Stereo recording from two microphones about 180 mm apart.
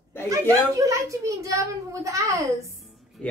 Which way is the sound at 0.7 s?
20° right (ahead or behind).